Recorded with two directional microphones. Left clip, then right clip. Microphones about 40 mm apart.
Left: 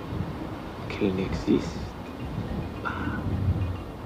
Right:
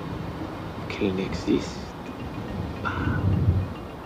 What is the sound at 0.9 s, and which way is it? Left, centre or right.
Speech, right.